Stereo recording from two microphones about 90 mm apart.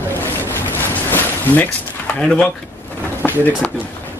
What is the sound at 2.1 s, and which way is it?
Speech, 10° left (ahead or behind).